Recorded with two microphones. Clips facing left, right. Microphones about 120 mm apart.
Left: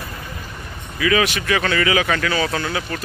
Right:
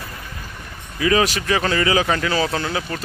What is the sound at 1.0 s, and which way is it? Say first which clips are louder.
Speech: right 1 dB; 35° right (ahead or behind).